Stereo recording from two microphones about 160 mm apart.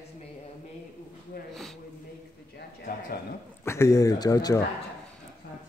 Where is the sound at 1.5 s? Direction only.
Centre (ahead or behind).